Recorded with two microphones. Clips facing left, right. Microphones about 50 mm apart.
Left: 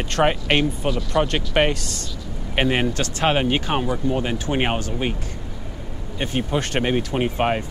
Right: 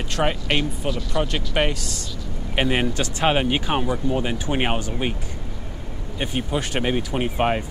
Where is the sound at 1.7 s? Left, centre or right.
Centre.